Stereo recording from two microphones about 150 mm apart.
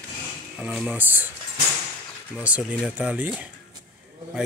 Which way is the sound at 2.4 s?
10° right (ahead or behind).